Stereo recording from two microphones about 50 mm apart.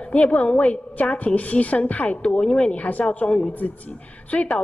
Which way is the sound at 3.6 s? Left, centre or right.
Left.